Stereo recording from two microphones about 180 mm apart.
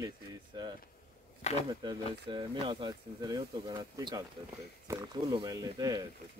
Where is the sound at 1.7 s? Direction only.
25° right (ahead or behind).